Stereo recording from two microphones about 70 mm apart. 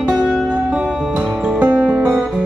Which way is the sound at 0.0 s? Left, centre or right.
Centre.